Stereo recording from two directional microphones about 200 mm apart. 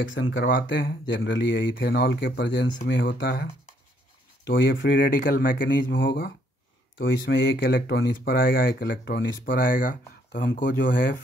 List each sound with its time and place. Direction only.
0.1 s speech: 75° left (ahead or behind)
4.5 s speech: 55° left (ahead or behind)
5.9 s speech: 65° left (ahead or behind)
9.7 s speech: 45° left (ahead or behind)
10.3 s speech: 60° left (ahead or behind)